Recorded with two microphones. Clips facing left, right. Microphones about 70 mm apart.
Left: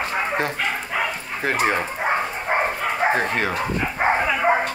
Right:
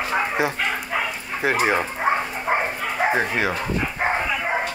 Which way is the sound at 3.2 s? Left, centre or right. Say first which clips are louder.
Even; centre.